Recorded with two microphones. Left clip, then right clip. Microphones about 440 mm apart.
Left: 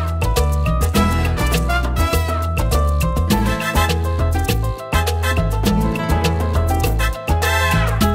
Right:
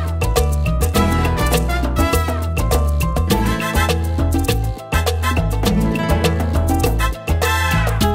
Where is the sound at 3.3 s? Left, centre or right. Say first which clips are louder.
Even; right.